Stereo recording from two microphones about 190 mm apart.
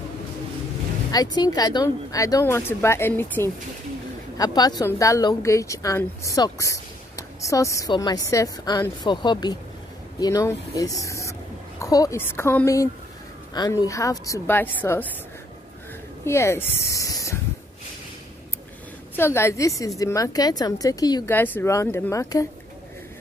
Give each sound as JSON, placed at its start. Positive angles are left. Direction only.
{"t": 1.1, "sound": "a woman's voice", "side_deg": 20}
{"t": 16.3, "sound": "a woman's voice", "side_deg": 15}
{"t": 16.9, "sound": "spray", "side_deg": 15}
{"t": 19.1, "sound": "a woman's voice", "side_deg": 15}